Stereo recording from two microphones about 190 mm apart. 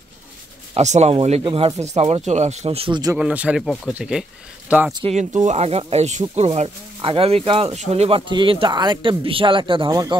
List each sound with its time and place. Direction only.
0.7 s speech: 35° right (ahead or behind)
3.2 s speech: 5° right (ahead or behind)
4.9 s speech: 35° right (ahead or behind)